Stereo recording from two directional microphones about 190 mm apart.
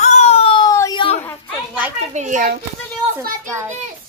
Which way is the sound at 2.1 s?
40° right (ahead or behind).